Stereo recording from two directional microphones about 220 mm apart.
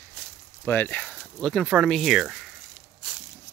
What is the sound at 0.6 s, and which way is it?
Speech, 10° left (ahead or behind).